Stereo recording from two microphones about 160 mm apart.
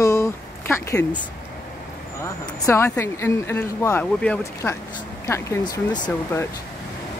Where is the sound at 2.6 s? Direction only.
15° left (ahead or behind).